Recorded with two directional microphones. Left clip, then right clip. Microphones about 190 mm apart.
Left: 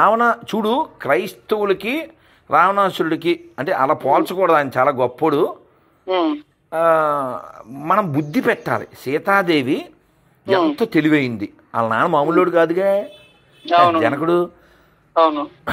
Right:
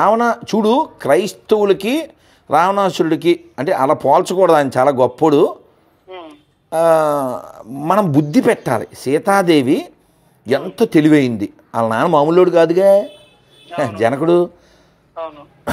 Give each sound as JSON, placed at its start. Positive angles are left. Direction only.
{"t": 0.0, "sound": "a man's voice", "side_deg": -15}
{"t": 6.0, "sound": "speech", "side_deg": 60}
{"t": 6.7, "sound": "a man's voice", "side_deg": -25}
{"t": 15.1, "sound": "a man's voice", "side_deg": 65}